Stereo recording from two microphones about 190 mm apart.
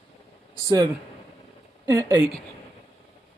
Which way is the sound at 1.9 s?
15° right (ahead or behind).